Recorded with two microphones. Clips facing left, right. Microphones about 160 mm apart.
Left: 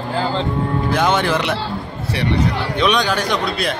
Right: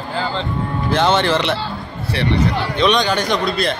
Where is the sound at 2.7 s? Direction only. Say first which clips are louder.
Right 1 dB; 5° left (ahead or behind).